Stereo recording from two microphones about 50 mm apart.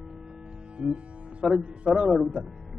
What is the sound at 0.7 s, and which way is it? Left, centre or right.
Music, right.